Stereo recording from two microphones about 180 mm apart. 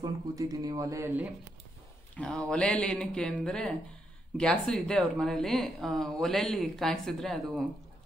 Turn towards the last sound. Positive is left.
turn(degrees=0)  # may be behind; listen again after turning